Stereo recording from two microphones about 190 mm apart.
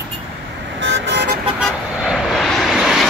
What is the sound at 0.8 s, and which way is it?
Vehicle, 75° right (ahead or behind).